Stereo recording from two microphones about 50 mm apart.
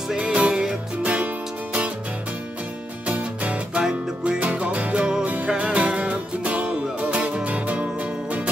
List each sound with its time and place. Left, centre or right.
0.1 s music: right
3.1 s music: right
5.2 s music: right